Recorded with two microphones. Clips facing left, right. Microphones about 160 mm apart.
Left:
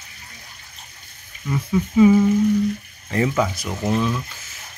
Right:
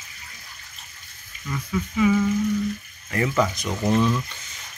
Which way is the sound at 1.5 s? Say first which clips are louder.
Left 7 dB; 25° left (ahead or behind).